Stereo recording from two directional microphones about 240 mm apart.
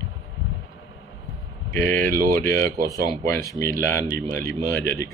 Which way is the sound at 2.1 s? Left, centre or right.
Right.